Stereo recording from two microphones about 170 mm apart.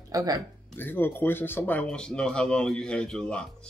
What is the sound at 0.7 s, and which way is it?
Speech, 10° left (ahead or behind).